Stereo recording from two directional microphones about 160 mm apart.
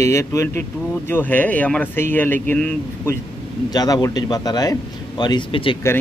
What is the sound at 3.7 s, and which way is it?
A man's voice, 25° left (ahead or behind).